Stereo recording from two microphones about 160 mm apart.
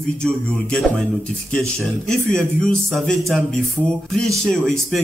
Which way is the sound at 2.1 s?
5° left (ahead or behind).